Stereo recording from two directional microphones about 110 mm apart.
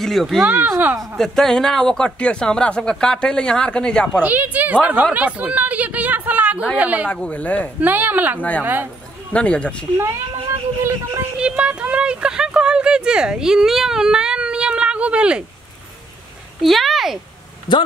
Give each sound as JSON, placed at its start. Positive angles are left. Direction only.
{"t": 0.0, "sound": "speech", "side_deg": 0}
{"t": 0.4, "sound": "speech", "side_deg": -20}
{"t": 1.1, "sound": "speech", "side_deg": 5}
{"t": 4.2, "sound": "speech", "side_deg": -15}
{"t": 7.1, "sound": "speech", "side_deg": 10}
{"t": 7.8, "sound": "speech", "side_deg": -15}
{"t": 8.4, "sound": "speech", "side_deg": 10}
{"t": 9.9, "sound": "a child's voice", "side_deg": -25}
{"t": 11.3, "sound": "a sound", "side_deg": -10}
{"t": 16.6, "sound": "speech", "side_deg": 0}